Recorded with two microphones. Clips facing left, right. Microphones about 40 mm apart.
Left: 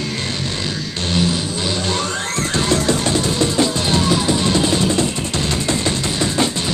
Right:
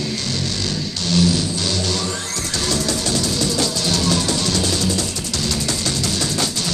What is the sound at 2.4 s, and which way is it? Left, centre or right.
Music, left.